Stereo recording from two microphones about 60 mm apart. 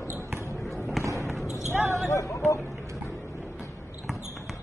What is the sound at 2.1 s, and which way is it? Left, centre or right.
Chatter, left.